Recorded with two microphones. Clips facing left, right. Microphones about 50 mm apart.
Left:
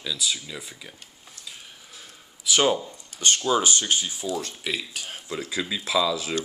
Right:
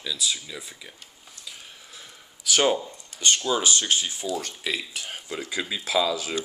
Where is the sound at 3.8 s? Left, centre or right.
Right.